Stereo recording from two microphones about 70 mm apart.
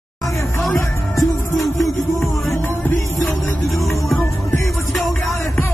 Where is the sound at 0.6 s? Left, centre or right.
Centre.